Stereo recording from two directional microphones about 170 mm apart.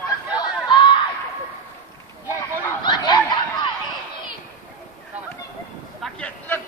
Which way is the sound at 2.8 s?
25° left (ahead or behind).